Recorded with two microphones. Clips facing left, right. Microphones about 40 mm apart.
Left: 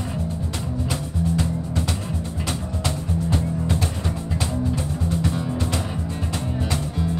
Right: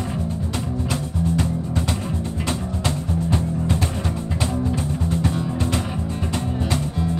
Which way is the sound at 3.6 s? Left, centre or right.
Centre.